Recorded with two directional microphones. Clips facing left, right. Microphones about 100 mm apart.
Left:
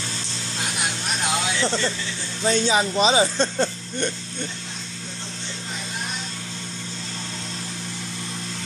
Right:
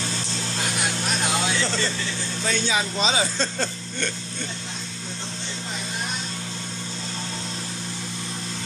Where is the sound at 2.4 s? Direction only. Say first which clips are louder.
Left 5 dB; 30° left (ahead or behind).